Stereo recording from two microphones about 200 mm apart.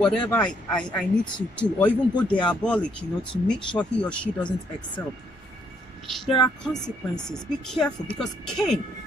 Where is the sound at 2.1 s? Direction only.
25° left (ahead or behind).